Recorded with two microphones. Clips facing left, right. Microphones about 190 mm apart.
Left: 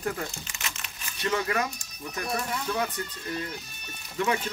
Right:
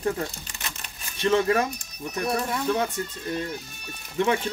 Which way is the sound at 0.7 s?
25° right (ahead or behind).